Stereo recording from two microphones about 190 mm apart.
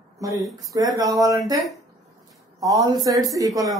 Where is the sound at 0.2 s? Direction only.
15° right (ahead or behind).